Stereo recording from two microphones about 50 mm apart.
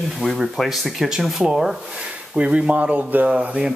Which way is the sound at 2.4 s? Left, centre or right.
Right.